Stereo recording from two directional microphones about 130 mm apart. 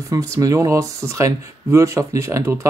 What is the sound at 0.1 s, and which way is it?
Speech, 25° right (ahead or behind).